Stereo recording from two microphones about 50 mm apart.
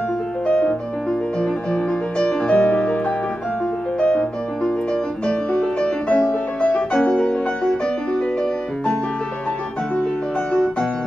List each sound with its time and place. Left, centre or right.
1.4 s music: centre
4.0 s music: centre
7.2 s music: centre